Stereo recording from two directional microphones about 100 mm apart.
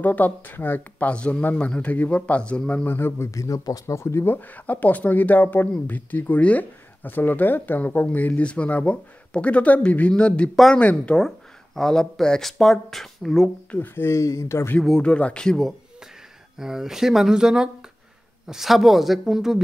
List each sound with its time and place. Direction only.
0.0 s speech: 15° left (ahead or behind)
13.7 s speech: 20° left (ahead or behind)
14.8 s speech: 10° left (ahead or behind)
16.5 s speech: 5° right (ahead or behind)